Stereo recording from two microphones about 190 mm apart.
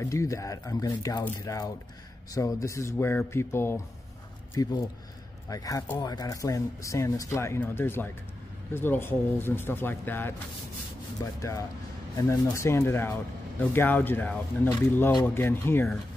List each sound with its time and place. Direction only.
0.0 s speech: 15° left (ahead or behind)